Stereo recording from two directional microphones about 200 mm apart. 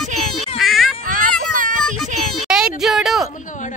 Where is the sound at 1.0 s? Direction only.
45° right (ahead or behind).